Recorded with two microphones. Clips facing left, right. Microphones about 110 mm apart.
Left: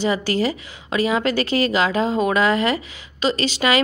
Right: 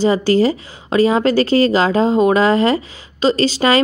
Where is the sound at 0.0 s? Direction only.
30° right (ahead or behind).